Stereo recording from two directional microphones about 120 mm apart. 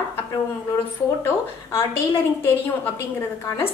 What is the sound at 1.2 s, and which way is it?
Speech, 20° left (ahead or behind).